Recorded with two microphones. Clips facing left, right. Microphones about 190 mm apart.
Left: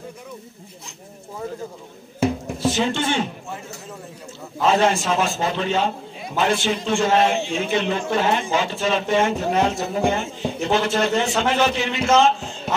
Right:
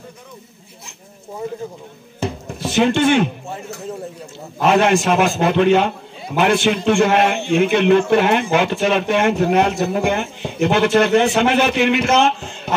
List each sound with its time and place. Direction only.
2.7 s a man's voice: 65° right (ahead or behind)
4.6 s a man's voice: 65° right (ahead or behind)